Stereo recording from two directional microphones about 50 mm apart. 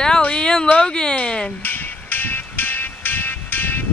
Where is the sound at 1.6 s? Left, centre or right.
Left.